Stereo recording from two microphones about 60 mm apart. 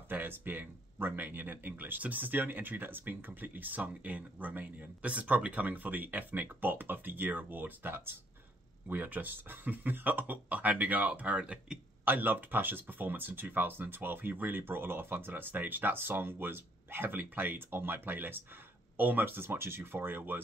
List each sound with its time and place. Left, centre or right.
0.1 s speech: right
12.0 s speech: right